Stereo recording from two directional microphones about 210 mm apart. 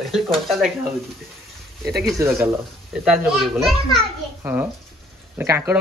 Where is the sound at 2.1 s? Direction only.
10° right (ahead or behind).